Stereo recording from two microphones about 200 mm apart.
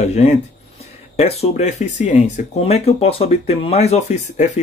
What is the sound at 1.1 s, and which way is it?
Speech, 30° left (ahead or behind).